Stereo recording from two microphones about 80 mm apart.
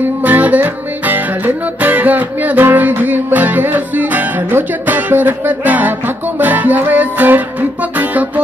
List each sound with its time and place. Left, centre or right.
0.2 s music: right